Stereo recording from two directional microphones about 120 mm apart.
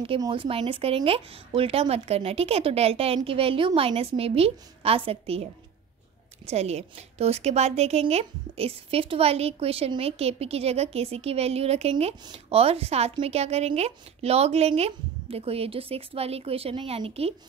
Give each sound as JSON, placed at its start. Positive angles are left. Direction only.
{"t": 0.3, "sound": "speech", "side_deg": -50}
{"t": 6.4, "sound": "a woman's voice", "side_deg": -65}